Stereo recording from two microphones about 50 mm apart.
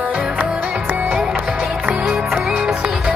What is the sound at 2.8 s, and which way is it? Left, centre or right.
Music, centre.